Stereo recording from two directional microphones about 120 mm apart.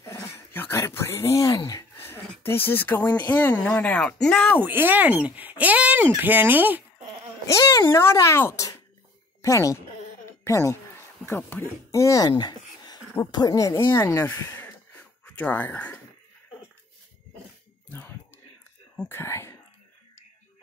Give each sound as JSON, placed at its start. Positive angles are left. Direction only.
{"t": 0.0, "sound": "dog", "side_deg": 20}
{"t": 1.7, "sound": "speech", "side_deg": 25}
{"t": 4.6, "sound": "speech", "side_deg": -15}
{"t": 7.4, "sound": "speech", "side_deg": 25}
{"t": 11.9, "sound": "a sound", "side_deg": 25}
{"t": 13.3, "sound": "speech", "side_deg": 35}
{"t": 18.9, "sound": "speech", "side_deg": 20}